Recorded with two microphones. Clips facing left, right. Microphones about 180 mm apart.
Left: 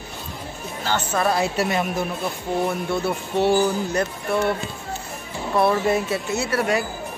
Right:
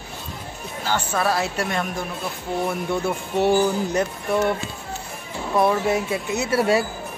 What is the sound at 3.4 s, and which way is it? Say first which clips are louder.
Speech: right 1 dB; 15° right (ahead or behind).